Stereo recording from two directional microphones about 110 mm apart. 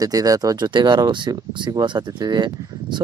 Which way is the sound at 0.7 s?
45° right (ahead or behind).